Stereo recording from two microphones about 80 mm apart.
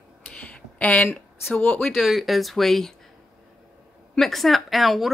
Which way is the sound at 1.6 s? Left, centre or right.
Left.